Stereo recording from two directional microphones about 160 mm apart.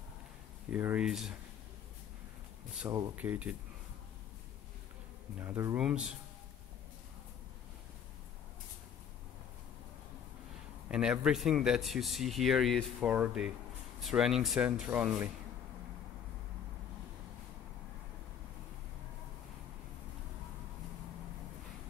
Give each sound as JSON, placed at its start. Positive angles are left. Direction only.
{"t": 0.7, "sound": "speech", "side_deg": -10}
{"t": 2.8, "sound": "speech", "side_deg": -20}
{"t": 5.4, "sound": "speech", "side_deg": -15}
{"t": 10.9, "sound": "speech", "side_deg": -5}